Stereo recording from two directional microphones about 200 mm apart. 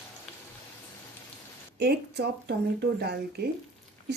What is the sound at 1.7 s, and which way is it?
A woman's voice, 55° right (ahead or behind).